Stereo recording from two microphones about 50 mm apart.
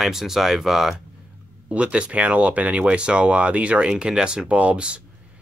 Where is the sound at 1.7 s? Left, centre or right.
Centre.